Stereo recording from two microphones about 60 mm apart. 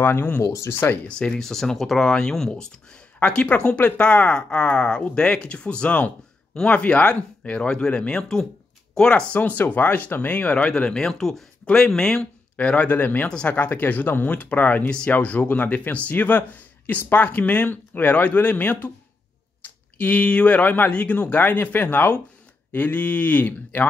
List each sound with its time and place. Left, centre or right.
0.0 s speech: left
0.4 s speech: left
0.7 s speech: left
1.0 s speech: centre
9.3 s speech: left